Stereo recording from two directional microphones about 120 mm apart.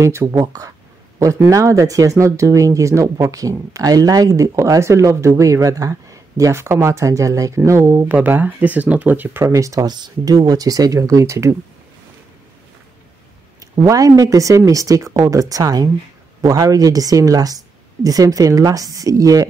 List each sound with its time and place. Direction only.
0.0 s speech: 25° right (ahead or behind)
9.5 s speech: 30° right (ahead or behind)
13.6 s speech: 30° right (ahead or behind)